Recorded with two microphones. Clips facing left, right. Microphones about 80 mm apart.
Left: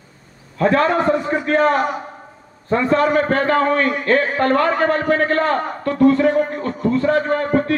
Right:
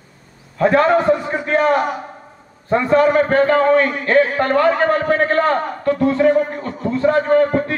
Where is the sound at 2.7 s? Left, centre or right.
Right.